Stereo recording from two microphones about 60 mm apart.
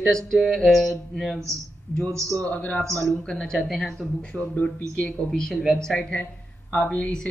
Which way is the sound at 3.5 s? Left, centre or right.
Centre.